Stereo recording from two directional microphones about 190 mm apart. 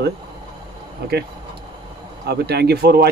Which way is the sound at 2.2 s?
60° right (ahead or behind).